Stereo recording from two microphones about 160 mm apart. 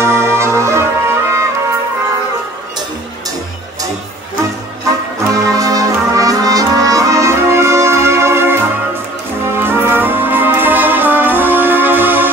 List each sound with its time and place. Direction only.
0.0 s music: 15° right (ahead or behind)
5.3 s music: 20° right (ahead or behind)
9.6 s brass instrument: 15° right (ahead or behind)